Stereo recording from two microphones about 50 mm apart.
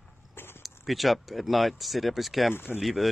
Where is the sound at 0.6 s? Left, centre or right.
Centre.